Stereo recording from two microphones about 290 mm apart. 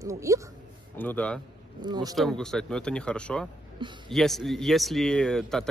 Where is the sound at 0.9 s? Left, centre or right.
Centre.